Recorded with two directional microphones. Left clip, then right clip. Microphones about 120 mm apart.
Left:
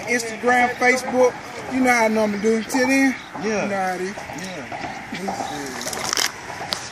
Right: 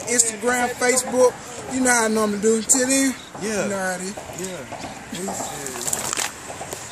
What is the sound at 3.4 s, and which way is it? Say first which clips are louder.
Speech: left 1 dB; 35° right (ahead or behind).